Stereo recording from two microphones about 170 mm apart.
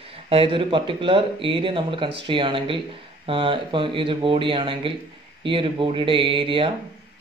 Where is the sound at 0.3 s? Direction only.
30° right (ahead or behind).